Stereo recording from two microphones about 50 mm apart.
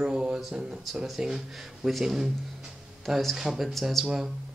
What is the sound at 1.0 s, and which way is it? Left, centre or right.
Speech, centre.